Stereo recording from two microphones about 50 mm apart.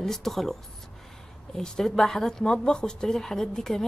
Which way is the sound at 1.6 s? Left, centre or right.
Centre.